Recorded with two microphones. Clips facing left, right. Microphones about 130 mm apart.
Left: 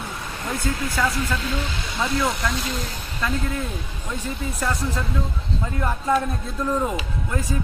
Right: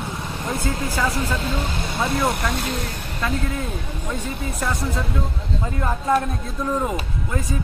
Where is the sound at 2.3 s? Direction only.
60° right (ahead or behind).